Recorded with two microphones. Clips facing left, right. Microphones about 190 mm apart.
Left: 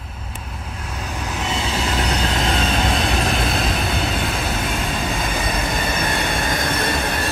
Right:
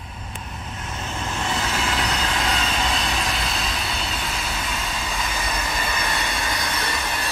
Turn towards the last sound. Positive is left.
turn(degrees=55)  # may be behind; listen again after turning